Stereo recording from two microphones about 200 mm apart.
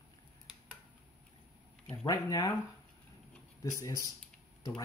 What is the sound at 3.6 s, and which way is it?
Speech, 15° left (ahead or behind).